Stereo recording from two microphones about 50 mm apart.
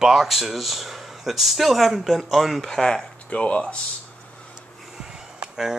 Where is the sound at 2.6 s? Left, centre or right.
Centre.